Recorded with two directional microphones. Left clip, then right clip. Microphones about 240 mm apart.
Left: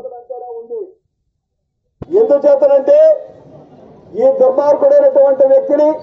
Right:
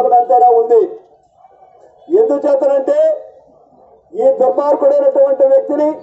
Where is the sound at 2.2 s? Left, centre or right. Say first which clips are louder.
Left 7 dB; right.